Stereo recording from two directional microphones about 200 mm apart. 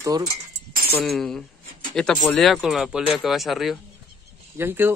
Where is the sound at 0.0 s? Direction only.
15° right (ahead or behind).